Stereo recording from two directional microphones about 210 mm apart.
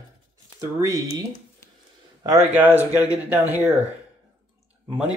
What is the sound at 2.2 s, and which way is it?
Speech, 10° right (ahead or behind).